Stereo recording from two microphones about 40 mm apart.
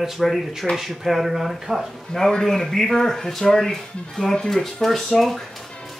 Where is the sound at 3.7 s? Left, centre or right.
Centre.